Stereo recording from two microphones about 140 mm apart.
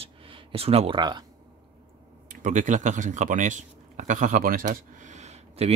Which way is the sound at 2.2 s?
65° right (ahead or behind).